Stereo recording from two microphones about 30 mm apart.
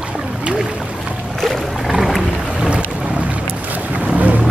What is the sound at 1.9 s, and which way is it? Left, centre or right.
Boat, centre.